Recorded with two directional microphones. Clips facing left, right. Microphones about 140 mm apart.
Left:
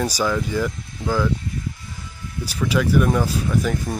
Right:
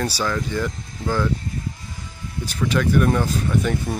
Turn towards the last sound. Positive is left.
turn(degrees=0)  # may be behind; listen again after turning